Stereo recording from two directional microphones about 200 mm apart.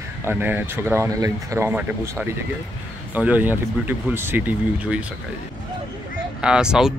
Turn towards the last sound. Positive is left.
turn(degrees=-5)  # may be behind; listen again after turning